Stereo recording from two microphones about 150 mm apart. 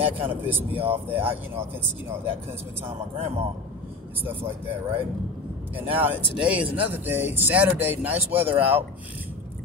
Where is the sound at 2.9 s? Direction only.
45° right (ahead or behind).